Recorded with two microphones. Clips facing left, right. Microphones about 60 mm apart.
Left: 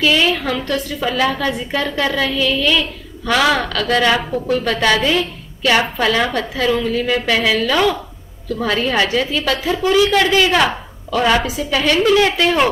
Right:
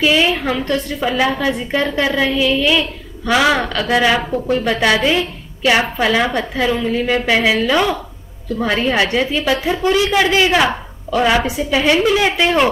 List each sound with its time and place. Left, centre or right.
0.0 s a woman's voice: centre
11.7 s a woman's voice: centre